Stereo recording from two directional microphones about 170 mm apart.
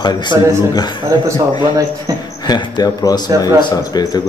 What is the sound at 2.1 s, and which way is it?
Speech, 20° right (ahead or behind).